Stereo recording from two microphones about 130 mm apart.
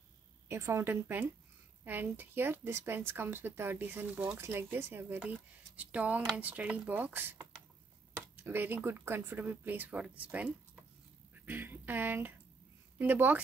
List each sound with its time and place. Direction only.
0.5 s speech: 20° right (ahead or behind)
11.4 s a sound: 15° right (ahead or behind)
13.0 s speech: 15° right (ahead or behind)